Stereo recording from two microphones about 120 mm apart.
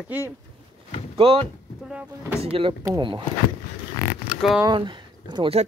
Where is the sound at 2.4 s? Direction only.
55° right (ahead or behind).